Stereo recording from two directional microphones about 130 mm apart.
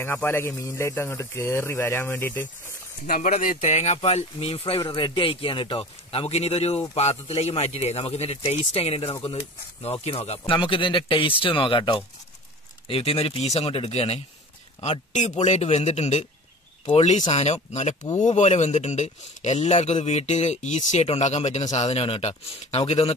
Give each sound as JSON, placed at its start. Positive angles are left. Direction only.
{"t": 0.0, "sound": "a man's voice", "side_deg": 15}
{"t": 3.2, "sound": "speech", "side_deg": 85}